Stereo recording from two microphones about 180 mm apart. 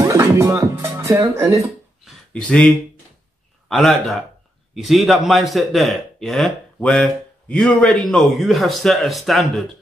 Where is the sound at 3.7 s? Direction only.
Centre (ahead or behind).